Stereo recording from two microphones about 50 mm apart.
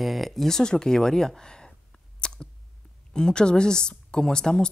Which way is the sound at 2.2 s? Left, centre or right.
Centre.